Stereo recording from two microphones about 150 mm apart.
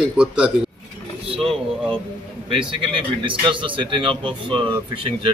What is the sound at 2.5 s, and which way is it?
A man's voice, 35° right (ahead or behind).